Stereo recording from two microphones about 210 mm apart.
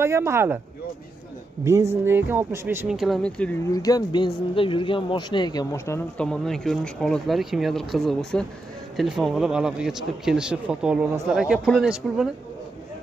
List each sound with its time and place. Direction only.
0.0 s speech: 15° right (ahead or behind)
1.6 s speech: 15° right (ahead or behind); by 3.5 s 5° left (ahead or behind)
3.7 s speech: 15° left (ahead or behind)
6.1 s speech: 5° left (ahead or behind)